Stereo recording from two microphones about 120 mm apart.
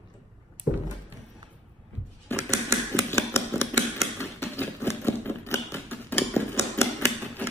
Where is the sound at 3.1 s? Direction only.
20° left (ahead or behind).